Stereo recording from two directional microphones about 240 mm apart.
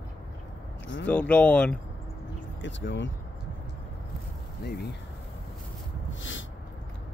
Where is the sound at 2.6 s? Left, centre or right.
Left.